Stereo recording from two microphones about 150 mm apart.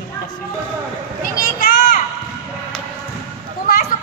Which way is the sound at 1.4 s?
70° left (ahead or behind).